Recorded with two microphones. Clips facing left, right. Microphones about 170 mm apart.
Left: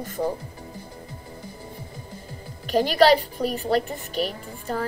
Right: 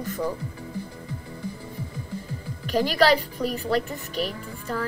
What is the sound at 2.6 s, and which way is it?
A woman's voice, 25° left (ahead or behind).